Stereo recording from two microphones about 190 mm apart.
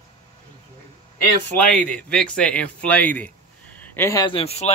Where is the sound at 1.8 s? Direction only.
5° left (ahead or behind).